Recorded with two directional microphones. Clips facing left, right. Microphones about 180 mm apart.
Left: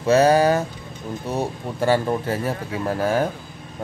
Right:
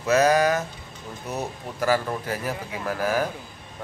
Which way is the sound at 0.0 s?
30° left (ahead or behind).